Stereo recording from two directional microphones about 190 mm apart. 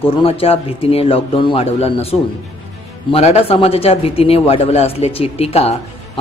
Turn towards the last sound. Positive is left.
turn(degrees=30)  # may be behind; listen again after turning